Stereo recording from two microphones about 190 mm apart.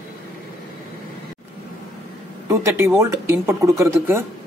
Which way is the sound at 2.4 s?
15° right (ahead or behind).